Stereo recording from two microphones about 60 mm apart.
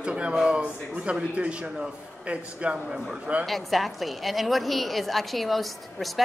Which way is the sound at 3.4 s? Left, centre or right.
Centre.